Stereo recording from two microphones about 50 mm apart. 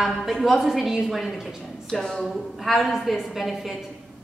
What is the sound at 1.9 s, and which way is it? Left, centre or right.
Speech, centre.